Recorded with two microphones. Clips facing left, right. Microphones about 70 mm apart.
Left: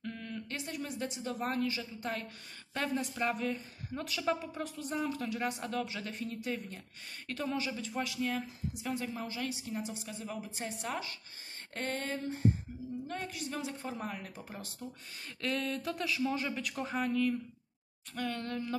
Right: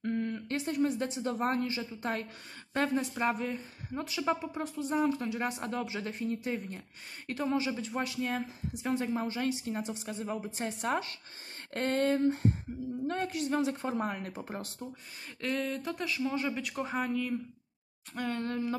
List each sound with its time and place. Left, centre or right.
0.0 s a woman's voice: right
15.4 s speech: centre
18.1 s a woman's voice: right